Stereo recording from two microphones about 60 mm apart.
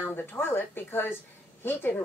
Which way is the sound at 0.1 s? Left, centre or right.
Left.